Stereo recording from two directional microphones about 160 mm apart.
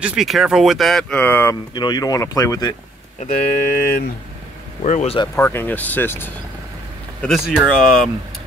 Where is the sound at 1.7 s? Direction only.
25° left (ahead or behind).